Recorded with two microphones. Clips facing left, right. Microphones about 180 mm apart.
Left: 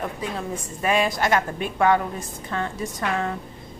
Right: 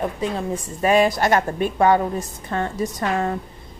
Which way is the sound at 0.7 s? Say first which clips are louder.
Right 5 dB; 35° right (ahead or behind).